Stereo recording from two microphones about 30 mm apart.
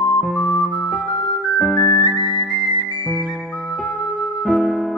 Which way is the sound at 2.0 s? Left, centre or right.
Right.